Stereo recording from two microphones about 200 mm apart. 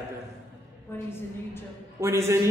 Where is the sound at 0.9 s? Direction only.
10° left (ahead or behind).